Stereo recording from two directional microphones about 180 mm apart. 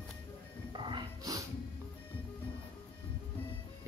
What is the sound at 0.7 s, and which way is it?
Music, 25° right (ahead or behind).